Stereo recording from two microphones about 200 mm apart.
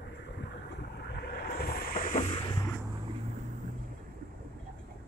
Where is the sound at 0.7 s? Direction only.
55° left (ahead or behind); by 2.5 s 35° left (ahead or behind).